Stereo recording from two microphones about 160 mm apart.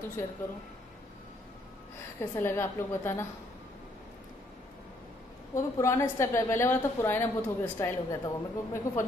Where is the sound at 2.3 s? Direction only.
15° left (ahead or behind).